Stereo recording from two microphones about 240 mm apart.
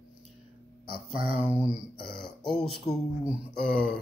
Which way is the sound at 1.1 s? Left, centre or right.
Right.